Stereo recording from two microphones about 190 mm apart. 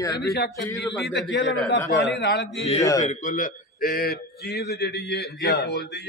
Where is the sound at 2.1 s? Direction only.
60° left (ahead or behind).